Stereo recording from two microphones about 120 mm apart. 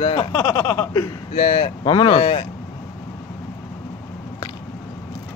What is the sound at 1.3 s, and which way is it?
Speech, 50° left (ahead or behind).